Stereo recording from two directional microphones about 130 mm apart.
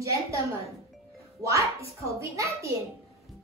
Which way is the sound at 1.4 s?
25° right (ahead or behind).